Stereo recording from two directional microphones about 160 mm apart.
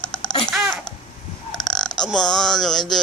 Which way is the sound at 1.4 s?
Centre (ahead or behind).